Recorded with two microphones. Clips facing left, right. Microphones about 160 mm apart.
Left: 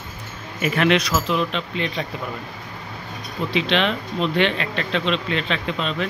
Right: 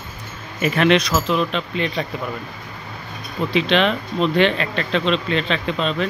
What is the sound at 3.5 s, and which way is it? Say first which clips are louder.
Speech: right 3 dB; 45° right (ahead or behind).